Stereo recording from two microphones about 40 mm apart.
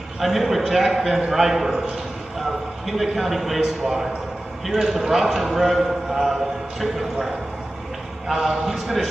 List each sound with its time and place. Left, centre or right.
0.2 s a man's voice: centre
3.0 s a man's voice: centre